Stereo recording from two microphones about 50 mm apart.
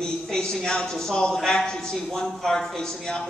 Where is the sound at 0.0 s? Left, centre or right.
Centre.